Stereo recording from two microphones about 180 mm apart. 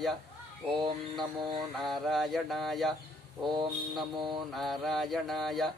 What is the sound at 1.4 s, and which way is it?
Speech, 25° right (ahead or behind).